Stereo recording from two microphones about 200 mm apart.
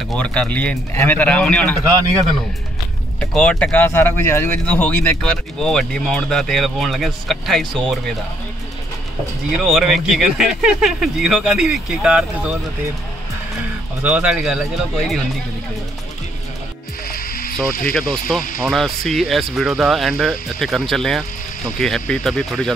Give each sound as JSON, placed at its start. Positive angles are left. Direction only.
{"t": 0.1, "sound": "speech", "side_deg": 5}
{"t": 3.2, "sound": "speech", "side_deg": 5}
{"t": 9.6, "sound": "speech", "side_deg": 0}
{"t": 14.0, "sound": "speech", "side_deg": -5}
{"t": 17.1, "sound": "music", "side_deg": 45}
{"t": 17.9, "sound": "speech", "side_deg": 0}